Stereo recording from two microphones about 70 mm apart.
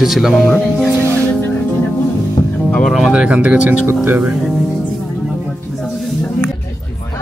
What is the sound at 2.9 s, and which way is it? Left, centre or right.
Speech, centre.